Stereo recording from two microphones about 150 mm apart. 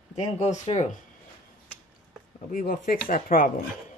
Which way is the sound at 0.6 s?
50° left (ahead or behind).